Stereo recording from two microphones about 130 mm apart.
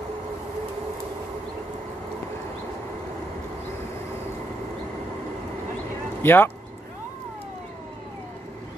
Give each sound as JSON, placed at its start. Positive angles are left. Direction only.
{"t": 6.2, "sound": "speech", "side_deg": 15}